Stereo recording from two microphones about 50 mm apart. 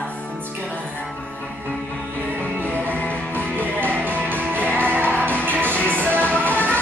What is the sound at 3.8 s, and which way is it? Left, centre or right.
Music, right.